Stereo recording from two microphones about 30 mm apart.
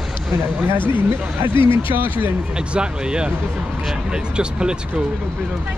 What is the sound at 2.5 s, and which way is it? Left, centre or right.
Speech, right.